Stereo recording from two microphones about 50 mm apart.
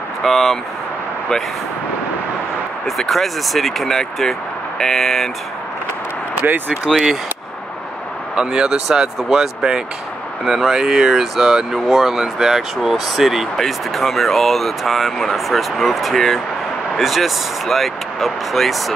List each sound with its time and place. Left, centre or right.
0.2 s speech: centre
3.0 s speech: centre
6.4 s speech: right
6.9 s speech: centre
8.4 s speech: centre